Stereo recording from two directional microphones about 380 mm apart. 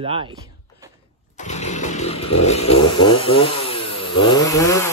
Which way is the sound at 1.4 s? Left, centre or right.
Centre.